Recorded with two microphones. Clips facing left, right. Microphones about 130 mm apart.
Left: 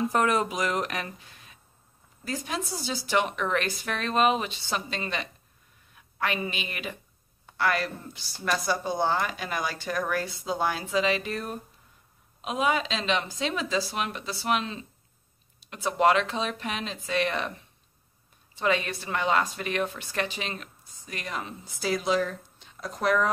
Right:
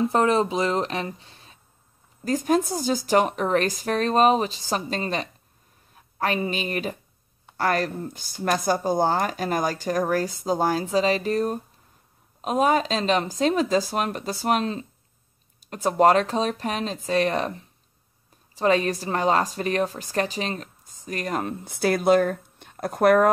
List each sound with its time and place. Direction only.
0.0 s speech: 30° right (ahead or behind)
2.2 s a woman's voice: 45° right (ahead or behind)
21.6 s speech: 60° right (ahead or behind)